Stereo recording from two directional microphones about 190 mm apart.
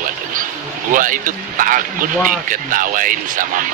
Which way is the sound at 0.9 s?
45° right (ahead or behind).